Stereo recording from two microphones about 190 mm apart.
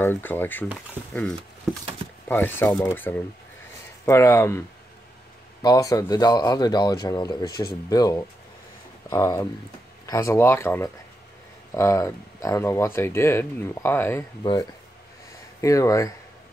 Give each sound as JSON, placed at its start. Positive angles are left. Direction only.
{"t": 0.0, "sound": "speech", "side_deg": 10}
{"t": 5.6, "sound": "speech", "side_deg": 20}
{"t": 7.4, "sound": "speech", "side_deg": 55}
{"t": 7.9, "sound": "speech", "side_deg": 20}
{"t": 15.6, "sound": "speech", "side_deg": 15}